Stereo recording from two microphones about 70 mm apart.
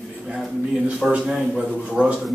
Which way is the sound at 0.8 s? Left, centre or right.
Centre.